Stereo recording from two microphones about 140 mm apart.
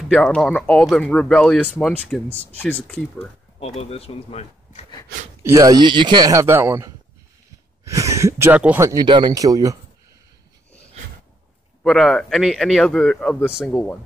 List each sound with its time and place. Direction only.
0.1 s speech: 5° left (ahead or behind)
3.5 s speech: 45° left (ahead or behind)
5.4 s speech: 25° right (ahead or behind)
8.8 s speech: 30° right (ahead or behind)
11.8 s speech: 5° left (ahead or behind)